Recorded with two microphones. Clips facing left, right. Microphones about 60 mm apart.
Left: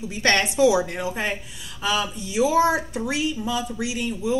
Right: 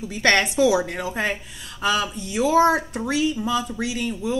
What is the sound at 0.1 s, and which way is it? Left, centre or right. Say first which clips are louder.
Speech: right 2 dB; right.